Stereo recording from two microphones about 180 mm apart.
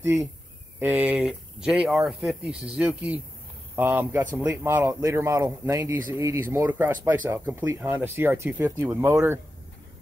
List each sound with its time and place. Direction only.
0.0 s speech: 15° right (ahead or behind)